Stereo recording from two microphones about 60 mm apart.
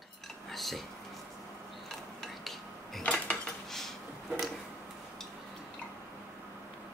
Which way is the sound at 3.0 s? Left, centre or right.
Left.